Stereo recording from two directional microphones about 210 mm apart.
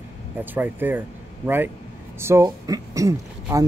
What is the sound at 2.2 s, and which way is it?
Speech, 15° right (ahead or behind).